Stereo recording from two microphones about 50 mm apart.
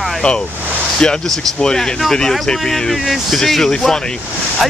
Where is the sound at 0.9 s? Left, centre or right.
Centre.